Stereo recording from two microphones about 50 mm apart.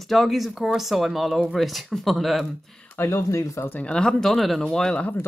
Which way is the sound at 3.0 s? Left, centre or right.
Left.